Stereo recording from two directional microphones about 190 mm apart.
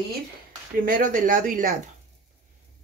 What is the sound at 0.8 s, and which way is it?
Speech, 45° right (ahead or behind).